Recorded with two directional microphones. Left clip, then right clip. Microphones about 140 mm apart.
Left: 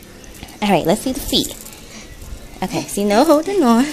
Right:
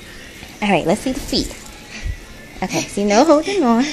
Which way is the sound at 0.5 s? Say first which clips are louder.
Left 1 dB; 10° left (ahead or behind).